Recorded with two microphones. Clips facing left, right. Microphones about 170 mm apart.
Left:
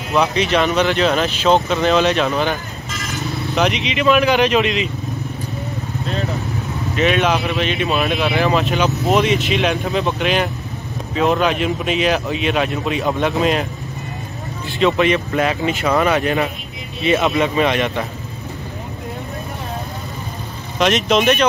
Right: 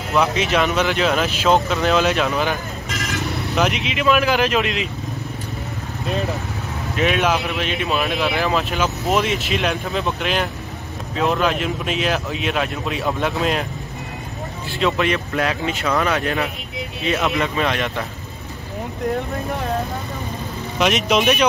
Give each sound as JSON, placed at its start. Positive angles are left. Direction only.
{"t": 0.1, "sound": "speech", "side_deg": 0}
{"t": 2.9, "sound": "vehicle", "side_deg": -65}
{"t": 3.5, "sound": "speech", "side_deg": 0}
{"t": 7.0, "sound": "speech", "side_deg": -5}
{"t": 14.8, "sound": "speech", "side_deg": 0}
{"t": 20.8, "sound": "speech", "side_deg": 0}